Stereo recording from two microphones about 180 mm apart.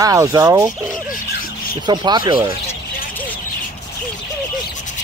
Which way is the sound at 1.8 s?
25° right (ahead or behind).